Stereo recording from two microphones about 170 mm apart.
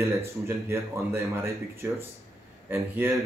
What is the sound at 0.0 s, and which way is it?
Speech, 15° right (ahead or behind).